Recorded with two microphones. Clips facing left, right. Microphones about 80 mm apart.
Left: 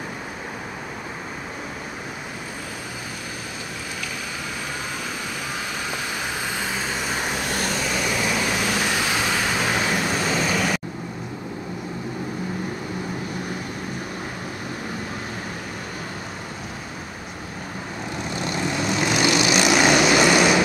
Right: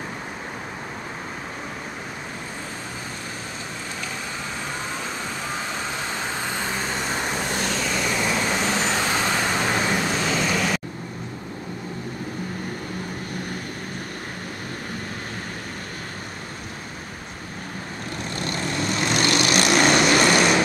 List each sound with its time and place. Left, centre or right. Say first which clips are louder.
6.5 s vehicle: even; centre
18.3 s vehicle: left 2 dB; centre